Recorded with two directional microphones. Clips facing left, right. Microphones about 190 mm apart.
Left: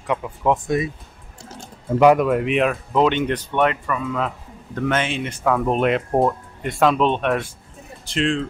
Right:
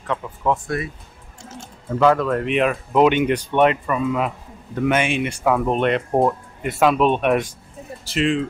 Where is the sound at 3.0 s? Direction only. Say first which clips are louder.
Right 3 dB; 10° right (ahead or behind).